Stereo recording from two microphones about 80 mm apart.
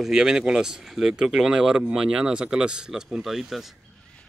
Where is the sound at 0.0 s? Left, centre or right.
Centre.